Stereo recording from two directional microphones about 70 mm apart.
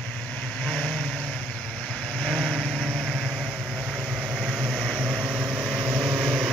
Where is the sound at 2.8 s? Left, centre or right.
Centre.